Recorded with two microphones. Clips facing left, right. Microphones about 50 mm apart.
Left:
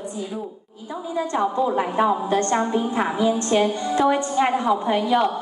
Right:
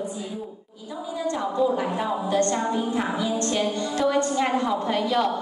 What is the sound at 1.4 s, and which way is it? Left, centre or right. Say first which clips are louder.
A woman's voice: left 1 dB; left.